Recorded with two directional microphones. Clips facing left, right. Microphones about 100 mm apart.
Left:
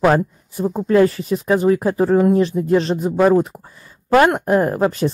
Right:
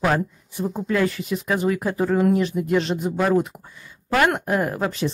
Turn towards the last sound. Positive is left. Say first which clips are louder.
# left 6 dB
turn(degrees=40)  # may be behind; listen again after turning